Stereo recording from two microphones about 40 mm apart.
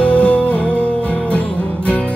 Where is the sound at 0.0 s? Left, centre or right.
Left.